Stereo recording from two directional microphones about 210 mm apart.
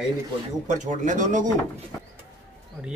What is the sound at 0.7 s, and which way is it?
Speech, 35° right (ahead or behind).